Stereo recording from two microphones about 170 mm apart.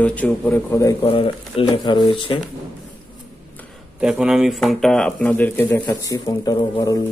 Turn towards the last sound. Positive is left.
turn(degrees=20)  # may be behind; listen again after turning